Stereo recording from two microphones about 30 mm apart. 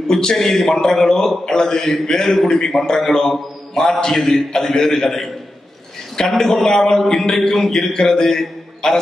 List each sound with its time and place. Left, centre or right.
0.1 s a man's voice: left